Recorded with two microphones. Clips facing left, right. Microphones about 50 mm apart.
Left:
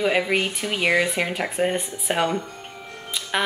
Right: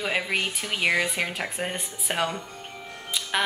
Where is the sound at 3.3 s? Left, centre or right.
Centre.